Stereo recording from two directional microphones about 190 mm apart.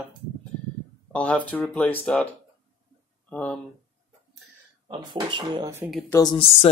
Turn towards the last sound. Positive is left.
turn(degrees=30)  # may be behind; listen again after turning